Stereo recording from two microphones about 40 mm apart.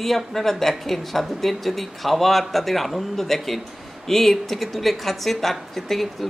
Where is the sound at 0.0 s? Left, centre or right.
Centre.